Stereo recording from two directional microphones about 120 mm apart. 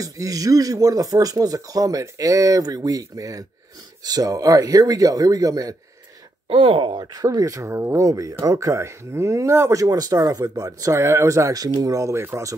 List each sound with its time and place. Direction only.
0.0 s speech: 30° right (ahead or behind)
6.5 s speech: 50° right (ahead or behind); by 12.5 s 20° right (ahead or behind)